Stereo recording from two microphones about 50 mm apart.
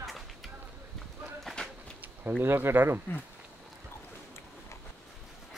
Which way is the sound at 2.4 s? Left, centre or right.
Right.